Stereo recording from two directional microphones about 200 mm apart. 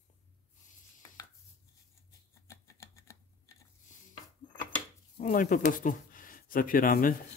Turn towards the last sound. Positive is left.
turn(degrees=45)  # may be behind; listen again after turning